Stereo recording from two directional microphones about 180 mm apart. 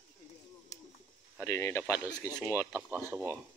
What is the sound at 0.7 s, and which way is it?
Bird, 20° left (ahead or behind).